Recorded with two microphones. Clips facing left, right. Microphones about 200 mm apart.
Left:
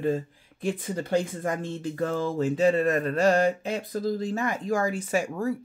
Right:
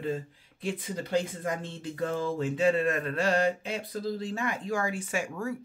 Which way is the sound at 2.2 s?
40° left (ahead or behind).